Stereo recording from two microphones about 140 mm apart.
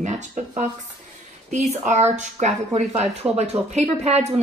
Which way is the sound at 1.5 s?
55° right (ahead or behind).